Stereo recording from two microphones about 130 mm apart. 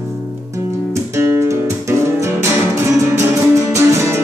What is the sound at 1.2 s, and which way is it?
Music, 25° right (ahead or behind).